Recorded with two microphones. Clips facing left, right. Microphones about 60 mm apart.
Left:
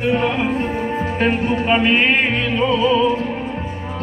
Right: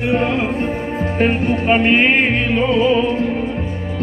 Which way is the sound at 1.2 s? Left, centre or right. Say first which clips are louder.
Right 2 dB; right.